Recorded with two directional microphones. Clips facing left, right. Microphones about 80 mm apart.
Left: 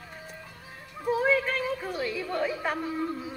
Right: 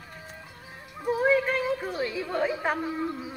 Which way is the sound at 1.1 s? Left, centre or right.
Centre.